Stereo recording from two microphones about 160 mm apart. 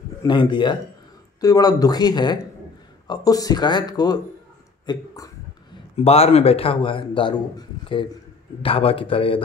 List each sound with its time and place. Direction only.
0.2 s speech: 30° left (ahead or behind)
5.9 s a man's voice: 40° left (ahead or behind)